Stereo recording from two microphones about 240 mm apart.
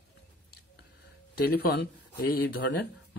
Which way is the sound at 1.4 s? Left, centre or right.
Left.